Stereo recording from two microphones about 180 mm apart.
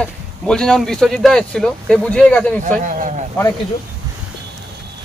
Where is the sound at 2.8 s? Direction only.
45° right (ahead or behind).